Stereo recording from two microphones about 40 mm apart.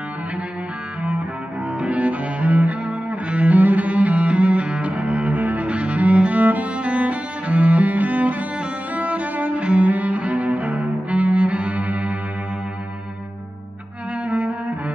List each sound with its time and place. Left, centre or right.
1.9 s cello: right
8.9 s music: right
9.6 s cello: right
14.2 s cello: right